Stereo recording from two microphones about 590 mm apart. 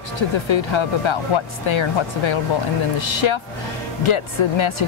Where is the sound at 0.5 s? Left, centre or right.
Left.